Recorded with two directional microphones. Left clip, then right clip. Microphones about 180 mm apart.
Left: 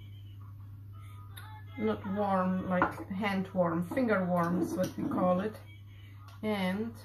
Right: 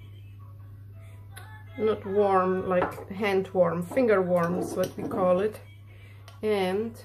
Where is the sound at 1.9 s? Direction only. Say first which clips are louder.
Right 8 dB; 60° right (ahead or behind).